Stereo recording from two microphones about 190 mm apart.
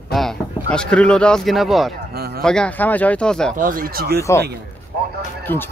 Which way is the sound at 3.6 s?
45° right (ahead or behind).